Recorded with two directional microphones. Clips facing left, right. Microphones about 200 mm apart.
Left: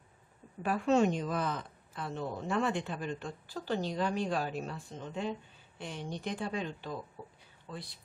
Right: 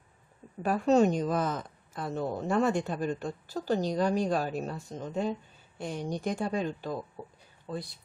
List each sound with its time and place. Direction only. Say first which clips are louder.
0.6 s a woman's voice: right 4 dB; 40° right (ahead or behind)